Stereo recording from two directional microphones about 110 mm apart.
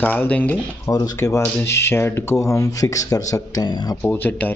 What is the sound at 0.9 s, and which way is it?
Speech, 30° left (ahead or behind).